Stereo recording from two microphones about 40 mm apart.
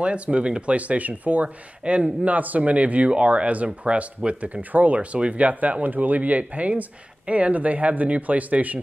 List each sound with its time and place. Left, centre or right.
0.0 s speech: right
2.3 s speech: right